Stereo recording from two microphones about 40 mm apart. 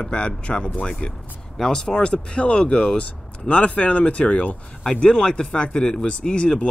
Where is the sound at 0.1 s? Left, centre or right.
Left.